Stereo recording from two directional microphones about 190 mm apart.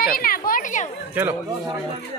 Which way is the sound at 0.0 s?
50° left (ahead or behind).